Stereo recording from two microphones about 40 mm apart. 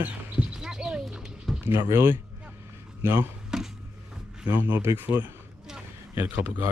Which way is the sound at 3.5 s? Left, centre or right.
Centre.